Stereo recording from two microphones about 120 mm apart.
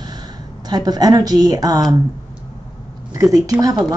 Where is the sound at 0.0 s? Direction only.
35° right (ahead or behind).